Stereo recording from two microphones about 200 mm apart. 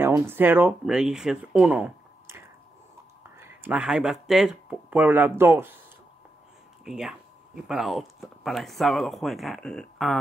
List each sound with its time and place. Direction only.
0.0 s speech: 10° right (ahead or behind)
6.8 s speech: centre (ahead or behind)